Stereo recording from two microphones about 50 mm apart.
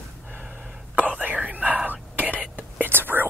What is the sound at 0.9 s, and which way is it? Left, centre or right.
Whispering, right.